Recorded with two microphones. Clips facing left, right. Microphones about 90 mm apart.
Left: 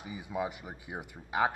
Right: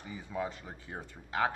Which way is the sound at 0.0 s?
10° left (ahead or behind).